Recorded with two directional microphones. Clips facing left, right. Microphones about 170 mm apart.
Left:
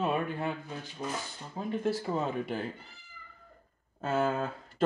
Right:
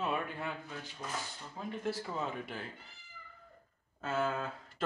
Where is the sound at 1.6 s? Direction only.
30° left (ahead or behind).